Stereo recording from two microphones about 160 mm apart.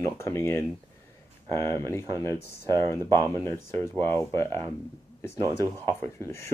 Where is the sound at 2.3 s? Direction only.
90° left.